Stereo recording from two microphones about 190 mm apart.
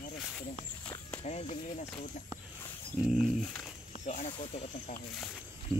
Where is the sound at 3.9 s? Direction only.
40° left (ahead or behind).